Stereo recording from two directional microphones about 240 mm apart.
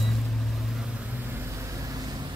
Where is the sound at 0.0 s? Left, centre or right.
Centre.